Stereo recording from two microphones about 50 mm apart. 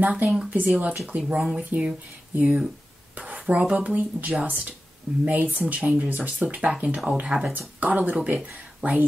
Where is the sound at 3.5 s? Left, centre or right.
Right.